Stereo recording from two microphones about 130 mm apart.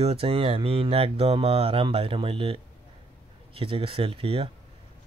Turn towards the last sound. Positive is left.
turn(degrees=-45)  # may be behind; listen again after turning